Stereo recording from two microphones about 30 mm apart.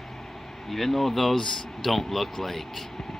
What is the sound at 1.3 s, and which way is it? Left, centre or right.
Speech, centre.